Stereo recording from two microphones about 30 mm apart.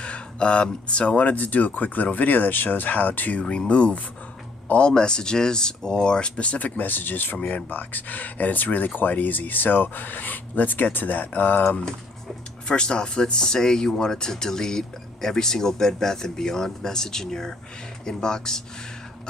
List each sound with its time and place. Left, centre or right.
0.0 s speech: left
2.1 s speech: left
3.3 s speech: left
4.7 s speech: left
6.6 s speech: left
7.4 s speech: left
12.6 s speech: left